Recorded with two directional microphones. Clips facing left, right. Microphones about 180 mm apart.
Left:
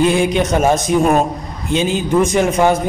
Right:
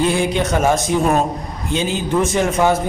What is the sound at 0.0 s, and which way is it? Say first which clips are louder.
A man's voice: left 3 dB; 15° left (ahead or behind).